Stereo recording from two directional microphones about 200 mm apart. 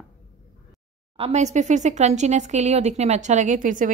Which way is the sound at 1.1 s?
30° right (ahead or behind).